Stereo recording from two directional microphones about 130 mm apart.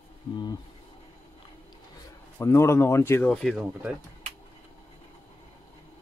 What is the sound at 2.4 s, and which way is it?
Speech, 20° left (ahead or behind).